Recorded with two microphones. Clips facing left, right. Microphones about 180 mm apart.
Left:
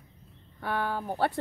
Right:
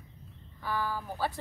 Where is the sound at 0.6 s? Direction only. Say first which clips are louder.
Left 3 dB; 65° left (ahead or behind).